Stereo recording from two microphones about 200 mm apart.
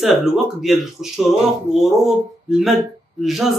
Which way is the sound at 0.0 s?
Centre (ahead or behind).